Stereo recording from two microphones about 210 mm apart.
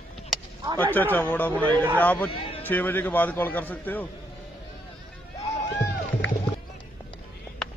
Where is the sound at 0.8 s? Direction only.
10° left (ahead or behind).